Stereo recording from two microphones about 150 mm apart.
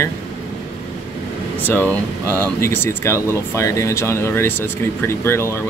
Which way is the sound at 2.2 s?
20° right (ahead or behind).